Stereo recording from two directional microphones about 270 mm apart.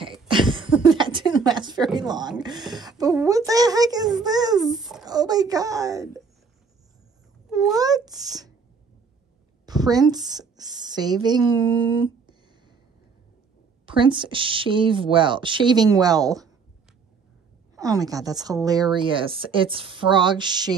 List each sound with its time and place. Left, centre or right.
0.3 s cough: centre
0.8 s a sound: centre
2.0 s a woman's voice: centre
4.6 s a sound: centre
5.0 s a woman's voice: centre
7.7 s a woman's voice: centre
9.7 s a woman's voice: centre
10.3 s speech: centre
11.0 s speech: centre
13.8 s a woman's voice: centre
17.7 s a woman's voice: centre